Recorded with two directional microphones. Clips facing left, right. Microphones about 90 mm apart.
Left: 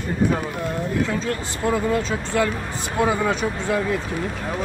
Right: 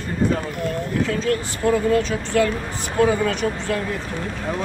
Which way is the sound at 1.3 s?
15° left (ahead or behind).